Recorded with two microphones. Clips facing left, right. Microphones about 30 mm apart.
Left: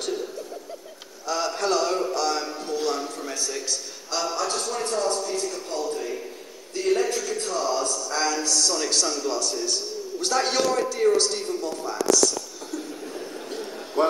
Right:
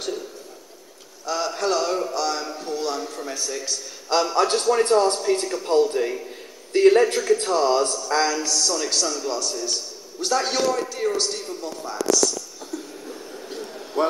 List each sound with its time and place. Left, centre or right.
1.2 s a man's voice: centre
4.1 s a man's voice: right
8.2 s speech: centre
8.5 s a man's voice: centre
13.5 s a sound: centre